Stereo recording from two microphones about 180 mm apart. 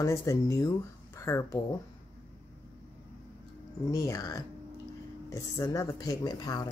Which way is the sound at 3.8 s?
20° left (ahead or behind).